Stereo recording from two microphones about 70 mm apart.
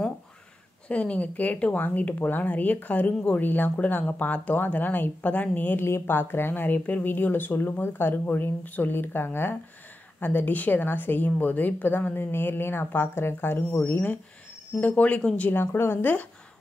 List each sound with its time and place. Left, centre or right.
0.8 s a woman's voice: centre; by 14.0 s left
14.8 s speech: left
15.5 s a woman's voice: left